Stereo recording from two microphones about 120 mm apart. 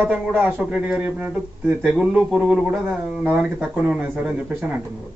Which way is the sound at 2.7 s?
20° right (ahead or behind).